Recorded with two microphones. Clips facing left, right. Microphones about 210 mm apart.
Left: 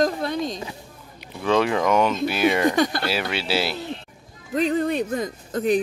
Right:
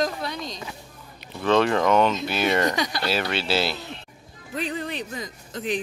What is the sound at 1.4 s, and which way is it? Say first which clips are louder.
Speech: even; 10° left (ahead or behind).